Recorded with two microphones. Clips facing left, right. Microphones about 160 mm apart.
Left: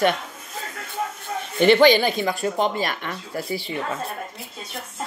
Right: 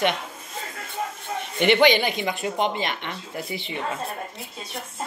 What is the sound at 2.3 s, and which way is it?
Speech, 40° left (ahead or behind).